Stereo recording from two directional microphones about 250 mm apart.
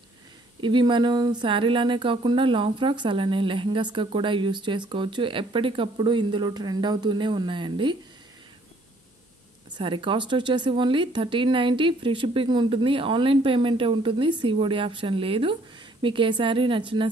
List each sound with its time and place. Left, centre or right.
0.6 s speech: centre
9.7 s speech: centre